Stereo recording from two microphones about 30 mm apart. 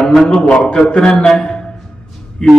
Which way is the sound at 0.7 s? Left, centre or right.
Left.